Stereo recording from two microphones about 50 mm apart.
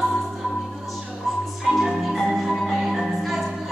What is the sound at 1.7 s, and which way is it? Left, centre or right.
Music, centre.